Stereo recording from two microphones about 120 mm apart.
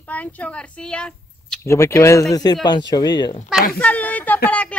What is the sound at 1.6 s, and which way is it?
Speech, 25° left (ahead or behind).